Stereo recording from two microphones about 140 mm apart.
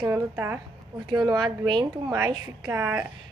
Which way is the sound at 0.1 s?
15° right (ahead or behind).